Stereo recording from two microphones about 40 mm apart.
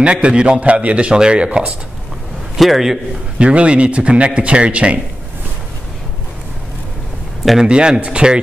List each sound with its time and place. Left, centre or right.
0.0 s speech: right
2.6 s a man's voice: centre
3.3 s speech: right
7.6 s speech: right